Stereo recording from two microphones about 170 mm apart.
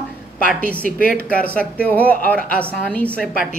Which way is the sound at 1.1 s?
10° left (ahead or behind).